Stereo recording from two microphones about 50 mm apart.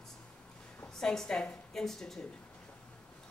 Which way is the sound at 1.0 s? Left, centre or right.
Centre.